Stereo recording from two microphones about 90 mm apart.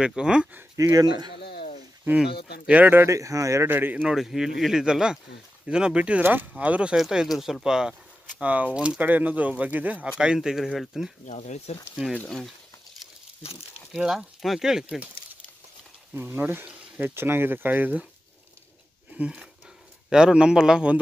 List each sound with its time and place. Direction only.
0.0 s speech: 10° right (ahead or behind)
0.7 s speech: 40° right (ahead or behind)
2.1 s speech: 10° right (ahead or behind)
3.0 s speech: 35° right (ahead or behind)
3.6 s speech: 20° right (ahead or behind)
4.1 s speech: 5° right (ahead or behind)
13.9 s speech: 5° right (ahead or behind)
16.2 s speech: 25° right (ahead or behind)
19.1 s speech: 10° right (ahead or behind)